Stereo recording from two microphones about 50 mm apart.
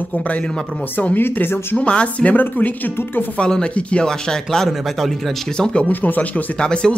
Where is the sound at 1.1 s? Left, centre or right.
Left.